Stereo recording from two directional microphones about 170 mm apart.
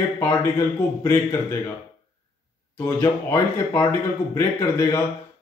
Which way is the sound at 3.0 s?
15° left (ahead or behind).